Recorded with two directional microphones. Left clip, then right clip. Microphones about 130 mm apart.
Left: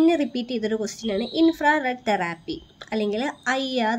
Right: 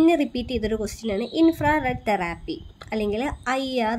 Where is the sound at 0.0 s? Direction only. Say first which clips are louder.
Right 1 dB; 15° right (ahead or behind).